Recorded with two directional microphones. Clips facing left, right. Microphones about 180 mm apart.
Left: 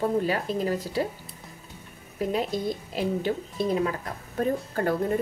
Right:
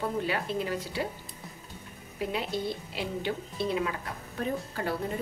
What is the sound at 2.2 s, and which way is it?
A woman's voice, 40° left (ahead or behind).